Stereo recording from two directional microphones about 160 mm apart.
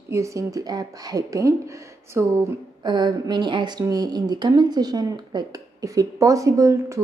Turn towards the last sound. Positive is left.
turn(degrees=-20)  # may be behind; listen again after turning